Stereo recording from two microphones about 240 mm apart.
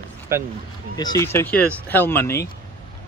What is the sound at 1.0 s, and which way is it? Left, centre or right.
Speech, centre.